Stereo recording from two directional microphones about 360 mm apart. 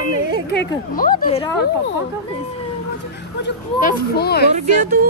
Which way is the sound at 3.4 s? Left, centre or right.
Left.